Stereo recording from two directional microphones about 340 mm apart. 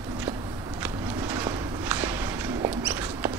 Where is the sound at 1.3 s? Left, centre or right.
Centre.